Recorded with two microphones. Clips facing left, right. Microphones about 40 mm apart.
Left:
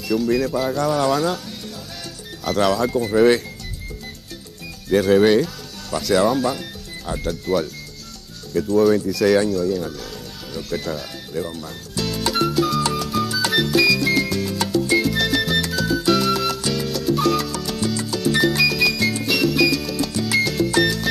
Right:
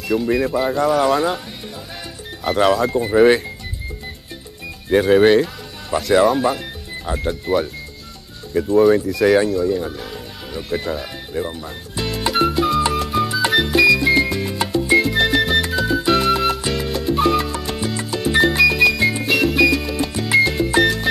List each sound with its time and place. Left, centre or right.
0.1 s speech: right
2.4 s speech: right
4.8 s speech: right
10.5 s music: right